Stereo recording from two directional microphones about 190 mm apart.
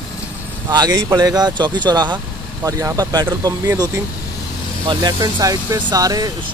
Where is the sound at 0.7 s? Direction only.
20° right (ahead or behind).